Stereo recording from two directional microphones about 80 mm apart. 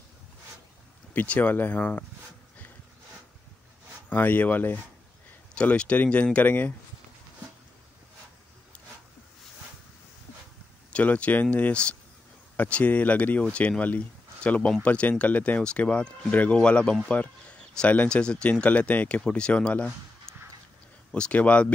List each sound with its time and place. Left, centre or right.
1.1 s speech: centre
4.1 s speech: left
5.5 s speech: centre
10.9 s speech: centre
21.1 s speech: centre